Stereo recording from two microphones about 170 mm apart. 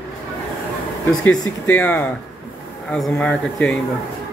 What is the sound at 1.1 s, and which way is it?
Speech, 5° left (ahead or behind).